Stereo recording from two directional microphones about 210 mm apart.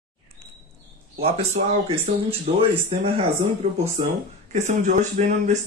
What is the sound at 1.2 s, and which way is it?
A woman's voice, 30° right (ahead or behind).